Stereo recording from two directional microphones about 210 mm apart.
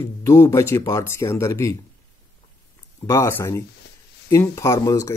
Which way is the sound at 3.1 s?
15° left (ahead or behind).